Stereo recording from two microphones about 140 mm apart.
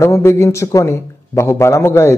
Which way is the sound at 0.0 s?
20° left (ahead or behind).